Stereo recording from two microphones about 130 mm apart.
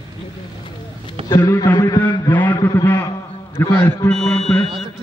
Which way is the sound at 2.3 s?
15° left (ahead or behind).